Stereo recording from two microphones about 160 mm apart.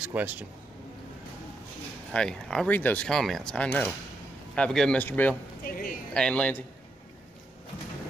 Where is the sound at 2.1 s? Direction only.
5° left (ahead or behind).